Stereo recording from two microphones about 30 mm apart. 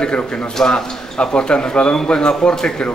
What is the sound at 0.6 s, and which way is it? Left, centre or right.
A man's voice, left.